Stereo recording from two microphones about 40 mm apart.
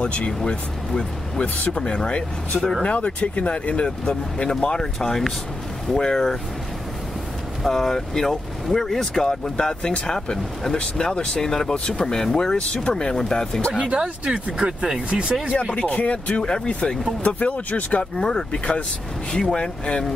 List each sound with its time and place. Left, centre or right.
0.0 s speech: left
1.7 s speech: left
7.6 s speech: centre
10.8 s speech: left
13.7 s speech: right
15.9 s speech: left
18.1 s speech: centre
18.5 s speech: left